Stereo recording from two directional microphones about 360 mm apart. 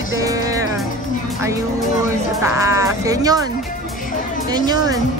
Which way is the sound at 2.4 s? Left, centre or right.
Centre.